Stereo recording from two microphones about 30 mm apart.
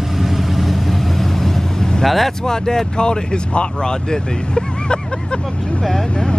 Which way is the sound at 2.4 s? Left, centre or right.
Centre.